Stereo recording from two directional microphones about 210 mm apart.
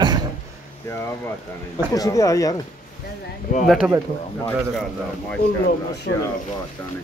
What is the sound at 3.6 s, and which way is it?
Speech, 5° right (ahead or behind).